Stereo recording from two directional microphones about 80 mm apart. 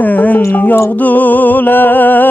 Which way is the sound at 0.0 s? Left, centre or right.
Left.